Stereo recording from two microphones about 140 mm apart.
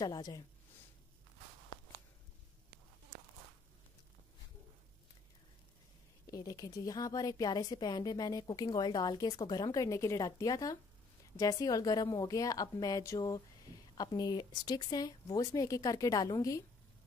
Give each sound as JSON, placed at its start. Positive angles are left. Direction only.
{"t": 0.0, "sound": "a woman's voice", "side_deg": 30}
{"t": 6.2, "sound": "a woman's voice", "side_deg": 25}